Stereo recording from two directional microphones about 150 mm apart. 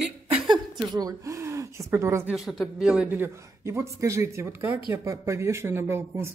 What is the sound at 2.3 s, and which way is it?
Speech, centre (ahead or behind).